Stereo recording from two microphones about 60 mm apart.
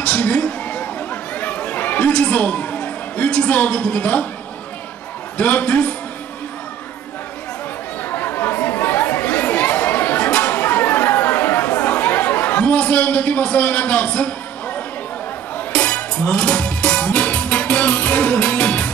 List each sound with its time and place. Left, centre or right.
0.0 s a sound: left
1.3 s chatter: left
5.4 s a man's voice: left
8.0 s chatter: left
15.5 s music: left